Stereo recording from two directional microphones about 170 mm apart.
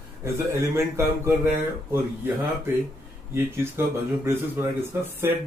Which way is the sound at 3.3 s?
15° right (ahead or behind).